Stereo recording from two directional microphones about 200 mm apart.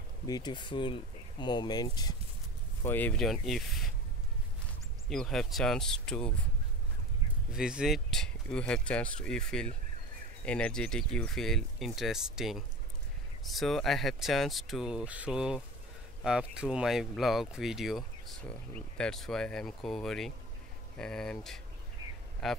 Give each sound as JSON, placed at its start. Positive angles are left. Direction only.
{"t": 0.3, "sound": "speech", "side_deg": 20}
{"t": 2.8, "sound": "speech", "side_deg": 10}
{"t": 5.1, "sound": "speech", "side_deg": 0}
{"t": 7.5, "sound": "speech", "side_deg": -5}